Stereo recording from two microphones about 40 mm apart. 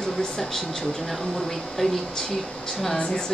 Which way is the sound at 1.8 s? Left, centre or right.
Centre.